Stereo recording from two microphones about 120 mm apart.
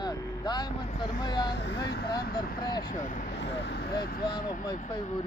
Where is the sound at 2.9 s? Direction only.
90° left.